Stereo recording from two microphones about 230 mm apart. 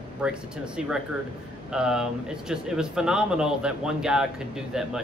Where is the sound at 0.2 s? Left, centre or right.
Centre.